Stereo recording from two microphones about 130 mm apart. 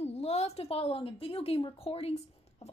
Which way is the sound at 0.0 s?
55° left (ahead or behind).